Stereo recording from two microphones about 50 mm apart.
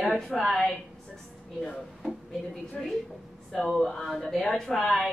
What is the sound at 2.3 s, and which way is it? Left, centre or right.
Speech, centre.